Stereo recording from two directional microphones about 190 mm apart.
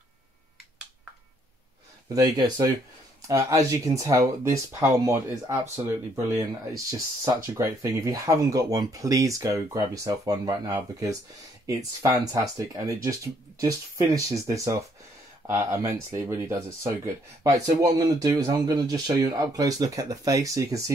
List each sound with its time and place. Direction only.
2.1 s speech: 20° right (ahead or behind)
12.3 s speech: 15° right (ahead or behind)